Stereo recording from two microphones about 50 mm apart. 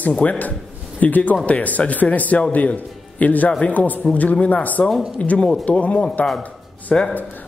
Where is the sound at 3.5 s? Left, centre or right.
Left.